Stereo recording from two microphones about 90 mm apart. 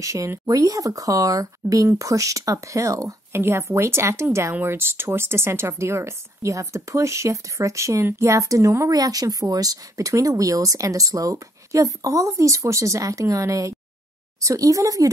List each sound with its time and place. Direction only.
0.0 s speech: 35° right (ahead or behind)